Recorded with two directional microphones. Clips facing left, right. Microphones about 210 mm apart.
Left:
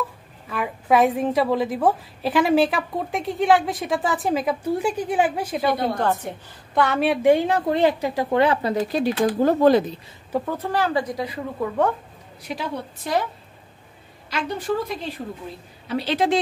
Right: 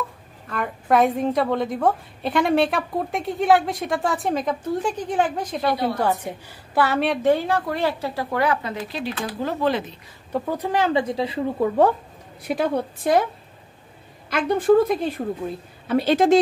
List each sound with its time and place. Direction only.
0.5 s a woman's voice: 5° left (ahead or behind)
5.9 s a woman's voice: 10° right (ahead or behind)
7.2 s a woman's voice: 20° left (ahead or behind); by 9.9 s 40° left (ahead or behind)
10.4 s speech: 15° right (ahead or behind); by 11.9 s 30° right (ahead or behind)
12.4 s a woman's voice: 55° right (ahead or behind)
14.3 s a woman's voice: 50° right (ahead or behind)